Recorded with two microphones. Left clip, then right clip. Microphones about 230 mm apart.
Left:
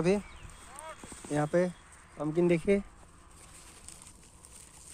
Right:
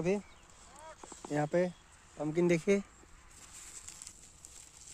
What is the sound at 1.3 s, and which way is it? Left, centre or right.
Speech, right.